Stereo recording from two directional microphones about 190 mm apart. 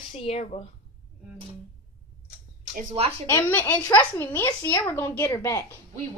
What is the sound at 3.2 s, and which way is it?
Speech, 10° left (ahead or behind).